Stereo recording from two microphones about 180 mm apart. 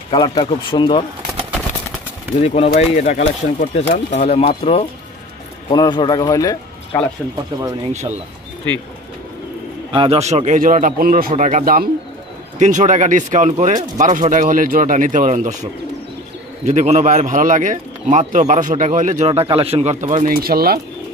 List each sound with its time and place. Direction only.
0.1 s speech: 25° left (ahead or behind)
2.4 s speech: 35° left (ahead or behind)
7.9 s speech: 40° right (ahead or behind)
9.9 s speech: 35° right (ahead or behind)
16.6 s speech: 40° right (ahead or behind)
20.3 s speech: 55° right (ahead or behind)